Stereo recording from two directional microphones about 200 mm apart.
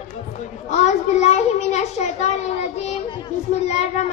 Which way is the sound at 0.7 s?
35° left (ahead or behind).